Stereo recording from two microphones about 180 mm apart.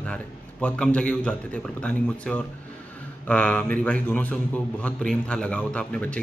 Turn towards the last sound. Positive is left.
turn(degrees=5)  # may be behind; listen again after turning